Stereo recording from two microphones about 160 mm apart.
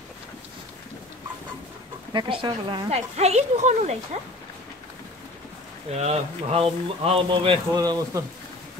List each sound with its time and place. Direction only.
2.1 s speech: 30° right (ahead or behind)
3.2 s speech: 40° right (ahead or behind)
5.9 s speech: 40° right (ahead or behind); by 8.2 s 25° right (ahead or behind)